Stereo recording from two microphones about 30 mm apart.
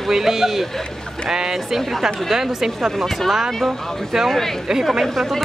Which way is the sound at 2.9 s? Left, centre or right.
Centre.